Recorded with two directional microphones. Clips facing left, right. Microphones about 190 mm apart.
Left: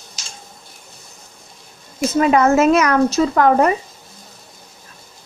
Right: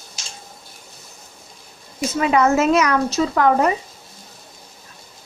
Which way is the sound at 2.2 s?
45° left (ahead or behind).